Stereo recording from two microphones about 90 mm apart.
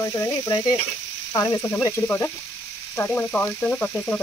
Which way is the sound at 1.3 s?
35° left (ahead or behind).